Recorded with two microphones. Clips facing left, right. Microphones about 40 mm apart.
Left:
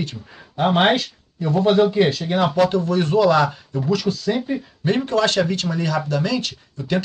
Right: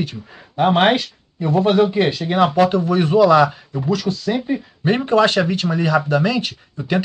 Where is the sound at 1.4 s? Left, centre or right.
Right.